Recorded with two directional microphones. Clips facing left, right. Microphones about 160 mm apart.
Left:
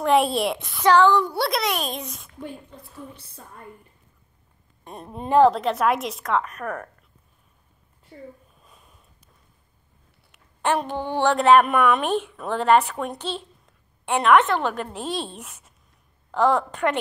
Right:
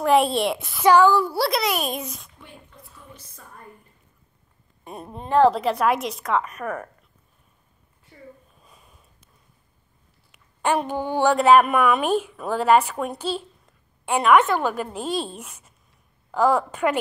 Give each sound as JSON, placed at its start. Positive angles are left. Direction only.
{"t": 0.0, "sound": "a woman's voice", "side_deg": 0}
{"t": 3.3, "sound": "a woman's voice", "side_deg": 30}
{"t": 4.8, "sound": "a woman's voice", "side_deg": -5}
{"t": 8.6, "sound": "a sound", "side_deg": 0}
{"t": 10.3, "sound": "a woman's voice", "side_deg": 0}